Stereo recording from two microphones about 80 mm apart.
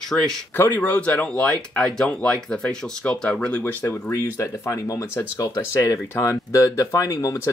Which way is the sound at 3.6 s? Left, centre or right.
Left.